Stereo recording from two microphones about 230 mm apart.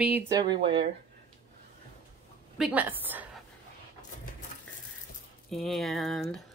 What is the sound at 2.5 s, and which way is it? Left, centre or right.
Speech, centre.